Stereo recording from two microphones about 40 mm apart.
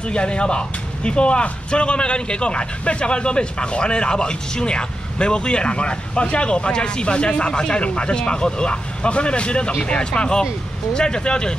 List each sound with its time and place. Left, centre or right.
0.1 s speech: left